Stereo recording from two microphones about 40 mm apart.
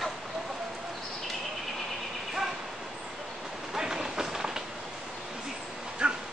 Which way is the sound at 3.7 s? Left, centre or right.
Centre.